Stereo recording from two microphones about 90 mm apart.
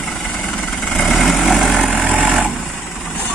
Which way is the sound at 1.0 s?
Centre (ahead or behind).